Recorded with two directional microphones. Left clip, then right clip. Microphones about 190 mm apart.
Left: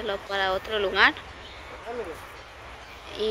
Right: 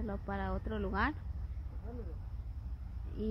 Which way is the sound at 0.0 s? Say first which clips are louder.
Left 14 dB; 25° right (ahead or behind).